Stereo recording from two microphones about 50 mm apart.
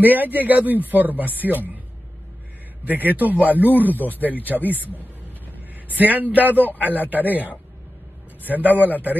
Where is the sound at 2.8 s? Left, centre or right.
Right.